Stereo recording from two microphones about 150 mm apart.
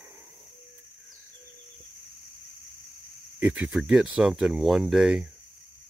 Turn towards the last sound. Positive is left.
turn(degrees=-5)  # may be behind; listen again after turning